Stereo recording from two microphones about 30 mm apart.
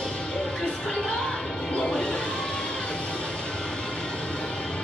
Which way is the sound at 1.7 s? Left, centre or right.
Left.